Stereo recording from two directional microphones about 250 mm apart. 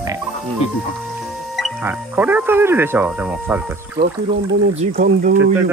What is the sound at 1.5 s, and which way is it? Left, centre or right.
Speech, centre.